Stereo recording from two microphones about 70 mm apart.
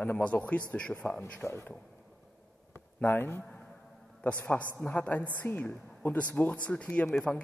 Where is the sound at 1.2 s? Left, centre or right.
Left.